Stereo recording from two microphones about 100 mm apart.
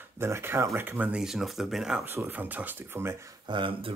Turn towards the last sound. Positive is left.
turn(degrees=-60)  # may be behind; listen again after turning